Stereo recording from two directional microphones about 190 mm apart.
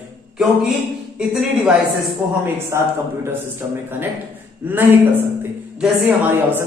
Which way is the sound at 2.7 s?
15° right (ahead or behind).